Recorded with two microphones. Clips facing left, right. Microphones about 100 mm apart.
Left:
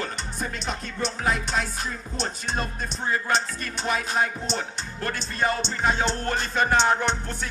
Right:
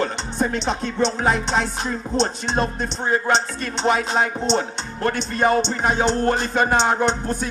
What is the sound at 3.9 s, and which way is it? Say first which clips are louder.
Music: right 1 dB; 75° right (ahead or behind).